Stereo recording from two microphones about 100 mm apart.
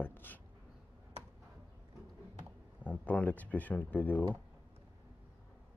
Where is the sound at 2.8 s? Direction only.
15° left (ahead or behind).